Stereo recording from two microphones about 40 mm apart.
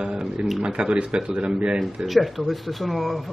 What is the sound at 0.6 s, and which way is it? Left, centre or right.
A man's voice, right.